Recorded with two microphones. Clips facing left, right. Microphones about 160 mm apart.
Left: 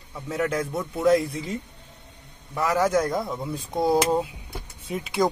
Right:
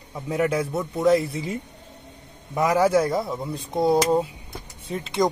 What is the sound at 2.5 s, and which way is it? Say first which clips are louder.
Speech: right 3 dB; 15° right (ahead or behind).